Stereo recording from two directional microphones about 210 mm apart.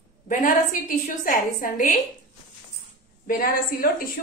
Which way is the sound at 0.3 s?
40° left (ahead or behind).